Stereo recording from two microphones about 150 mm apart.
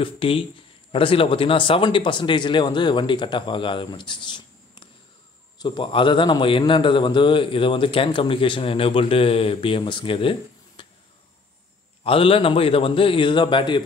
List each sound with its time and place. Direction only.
0.0 s a man's voice: 35° left (ahead or behind)
10.8 s a sound: 35° left (ahead or behind)
12.0 s a man's voice: 35° left (ahead or behind)